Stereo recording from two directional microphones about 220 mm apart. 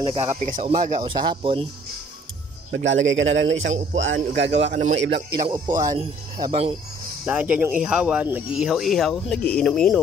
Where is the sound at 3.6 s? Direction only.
30° right (ahead or behind).